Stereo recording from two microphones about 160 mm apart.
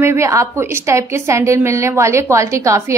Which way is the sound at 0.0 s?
15° right (ahead or behind).